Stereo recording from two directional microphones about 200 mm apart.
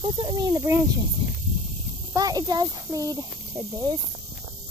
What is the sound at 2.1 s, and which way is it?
Speech, 20° right (ahead or behind).